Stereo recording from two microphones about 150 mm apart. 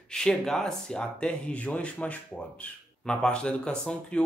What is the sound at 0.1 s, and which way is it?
Speech, 5° left (ahead or behind).